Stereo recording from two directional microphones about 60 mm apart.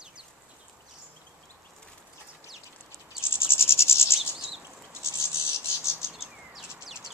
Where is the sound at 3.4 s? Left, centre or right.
Left.